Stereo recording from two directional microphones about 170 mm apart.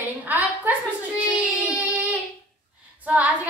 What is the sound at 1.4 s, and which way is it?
Child singing, 10° right (ahead or behind).